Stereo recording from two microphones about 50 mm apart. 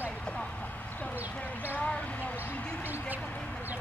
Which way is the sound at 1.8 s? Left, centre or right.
Left.